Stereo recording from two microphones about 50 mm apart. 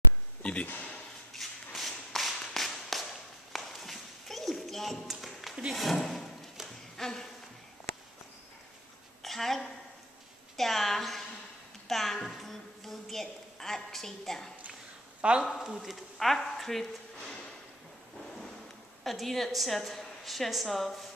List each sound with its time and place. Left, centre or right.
0.4 s speech: left
1.3 s whip: centre
5.7 s speech: centre
7.0 s a sound: centre
9.2 s a sound: centre
15.2 s speech: right
15.6 s speech: centre
19.0 s a woman's voice: centre